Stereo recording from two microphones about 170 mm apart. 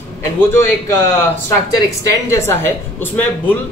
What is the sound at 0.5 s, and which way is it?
Speech, 15° left (ahead or behind).